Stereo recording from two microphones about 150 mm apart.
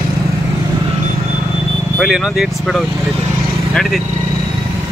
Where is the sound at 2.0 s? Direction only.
5° right (ahead or behind).